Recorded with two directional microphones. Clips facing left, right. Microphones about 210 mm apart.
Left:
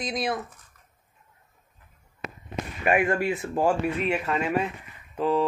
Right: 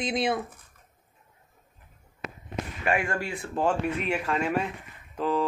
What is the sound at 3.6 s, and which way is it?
Speech, 10° left (ahead or behind).